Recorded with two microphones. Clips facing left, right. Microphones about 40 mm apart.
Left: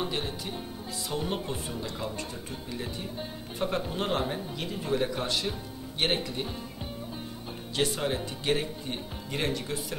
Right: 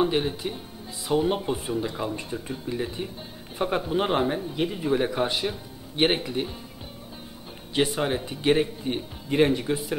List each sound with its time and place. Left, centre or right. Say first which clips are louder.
0.0 s speech: right 8 dB; centre
7.7 s speech: right 4 dB; centre